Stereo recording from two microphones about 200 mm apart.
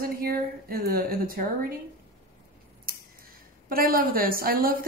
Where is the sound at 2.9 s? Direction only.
45° right (ahead or behind).